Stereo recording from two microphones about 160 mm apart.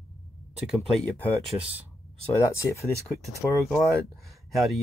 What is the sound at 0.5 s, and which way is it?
Speech, 5° right (ahead or behind).